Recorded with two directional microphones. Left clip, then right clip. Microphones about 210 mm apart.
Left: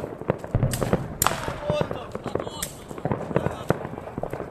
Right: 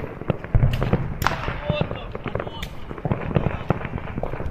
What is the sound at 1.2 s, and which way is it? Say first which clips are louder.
Basketball bounce: right 2 dB; 45° left (ahead or behind).